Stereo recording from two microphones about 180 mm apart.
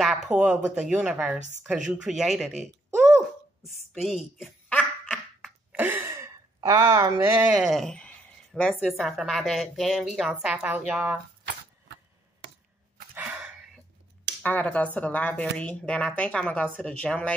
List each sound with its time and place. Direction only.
0.0 s speech: centre (ahead or behind)
4.6 s laughter: 5° left (ahead or behind)
5.7 s speech: 10° right (ahead or behind)
13.1 s dog: 10° right (ahead or behind)
14.4 s speech: 10° left (ahead or behind)